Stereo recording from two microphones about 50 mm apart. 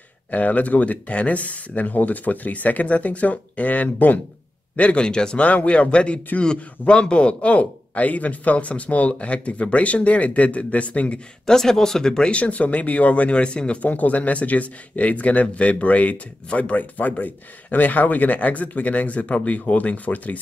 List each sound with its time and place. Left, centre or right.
0.3 s speech: left
11.4 s speech: centre; by 20.3 s left